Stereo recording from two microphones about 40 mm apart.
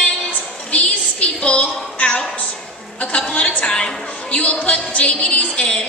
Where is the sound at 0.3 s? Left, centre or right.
Left.